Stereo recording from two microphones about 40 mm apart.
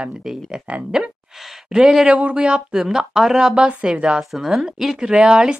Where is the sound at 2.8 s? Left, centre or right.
Centre.